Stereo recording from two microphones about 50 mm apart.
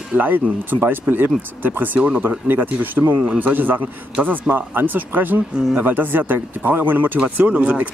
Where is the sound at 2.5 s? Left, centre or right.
Right.